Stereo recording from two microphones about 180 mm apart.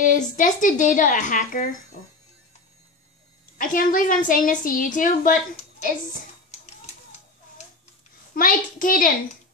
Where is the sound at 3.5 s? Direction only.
50° left (ahead or behind).